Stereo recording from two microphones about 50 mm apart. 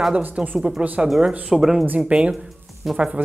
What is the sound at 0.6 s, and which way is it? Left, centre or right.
Speech, centre.